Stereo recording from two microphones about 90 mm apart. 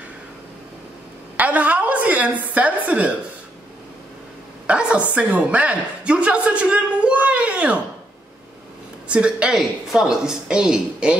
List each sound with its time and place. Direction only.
1.3 s a woman's voice: 15° right (ahead or behind)
4.6 s a woman's voice: 10° right (ahead or behind)
9.1 s a woman's voice: 10° right (ahead or behind)